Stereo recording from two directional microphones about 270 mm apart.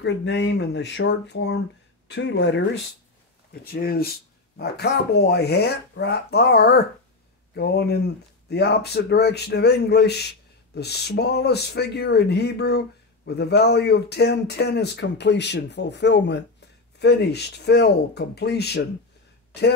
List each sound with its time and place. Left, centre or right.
0.0 s speech: left